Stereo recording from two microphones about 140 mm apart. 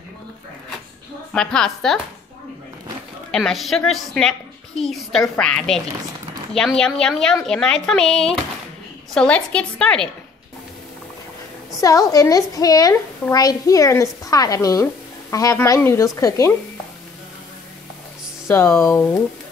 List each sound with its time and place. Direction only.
1.3 s a woman's voice: 5° left (ahead or behind)
3.3 s a woman's voice: 5° left (ahead or behind)
11.8 s a woman's voice: 25° left (ahead or behind)
18.5 s a woman's voice: 20° left (ahead or behind)